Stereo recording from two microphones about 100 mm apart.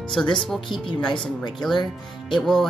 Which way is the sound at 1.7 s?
50° left (ahead or behind).